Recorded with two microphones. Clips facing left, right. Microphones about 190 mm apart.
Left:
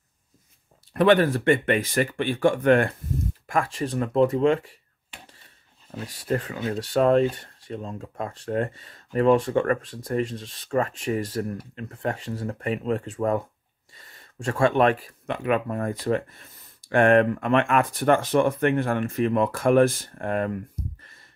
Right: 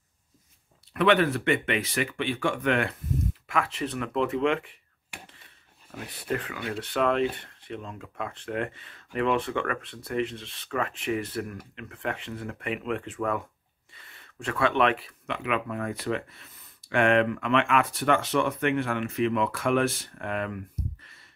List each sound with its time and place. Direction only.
0.9 s speech: 40° left (ahead or behind)
5.9 s speech: 35° left (ahead or behind)